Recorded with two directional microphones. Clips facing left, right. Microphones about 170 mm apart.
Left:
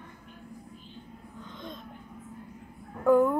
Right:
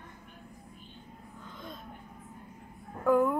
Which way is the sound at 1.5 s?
5° right (ahead or behind).